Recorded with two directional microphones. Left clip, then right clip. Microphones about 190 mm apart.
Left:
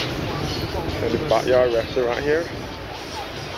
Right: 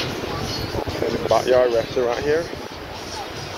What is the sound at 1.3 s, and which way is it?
Speech, 15° right (ahead or behind).